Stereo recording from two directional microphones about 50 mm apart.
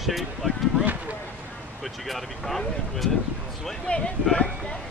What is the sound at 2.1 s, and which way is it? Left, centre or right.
Speech, centre.